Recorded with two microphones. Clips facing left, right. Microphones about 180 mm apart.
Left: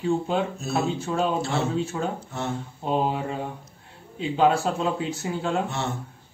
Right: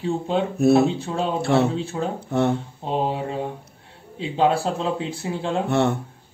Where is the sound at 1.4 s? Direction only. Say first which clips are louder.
Right 7 dB; 60° right (ahead or behind).